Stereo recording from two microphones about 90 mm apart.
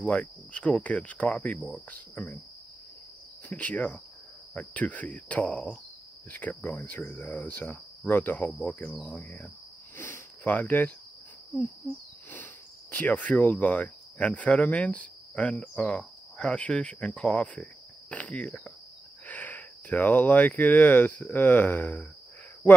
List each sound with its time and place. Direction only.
0.0 s cricket: 15° left (ahead or behind)
3.4 s cricket: 15° left (ahead or behind)
6.6 s speech: 20° left (ahead or behind)
8.5 s cricket: 15° left (ahead or behind)
9.9 s speech: 25° left (ahead or behind)
12.9 s cricket: 15° left (ahead or behind)
19.2 s speech: 15° left (ahead or behind)